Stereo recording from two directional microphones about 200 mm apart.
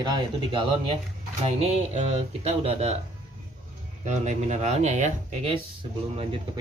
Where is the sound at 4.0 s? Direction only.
35° right (ahead or behind).